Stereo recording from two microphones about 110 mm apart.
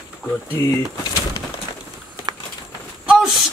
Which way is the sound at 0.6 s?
25° left (ahead or behind).